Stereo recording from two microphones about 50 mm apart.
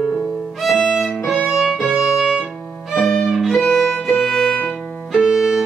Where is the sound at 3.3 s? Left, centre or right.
Centre.